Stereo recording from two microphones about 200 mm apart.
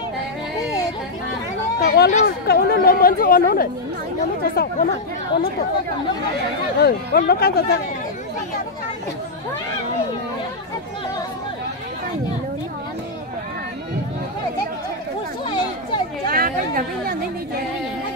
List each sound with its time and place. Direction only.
1.8 s speech: 55° left (ahead or behind)
6.8 s speech: 50° left (ahead or behind)
16.3 s chatter: 45° right (ahead or behind)